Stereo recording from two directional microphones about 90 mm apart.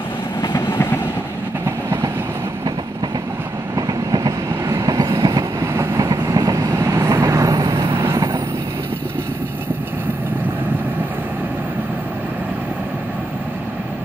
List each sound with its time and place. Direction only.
0.4 s train: 50° left (ahead or behind)
3.7 s train: 45° right (ahead or behind); by 8.2 s 30° right (ahead or behind)